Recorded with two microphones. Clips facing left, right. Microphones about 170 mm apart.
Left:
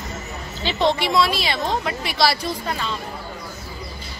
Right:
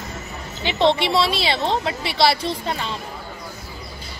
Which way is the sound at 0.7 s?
25° right (ahead or behind).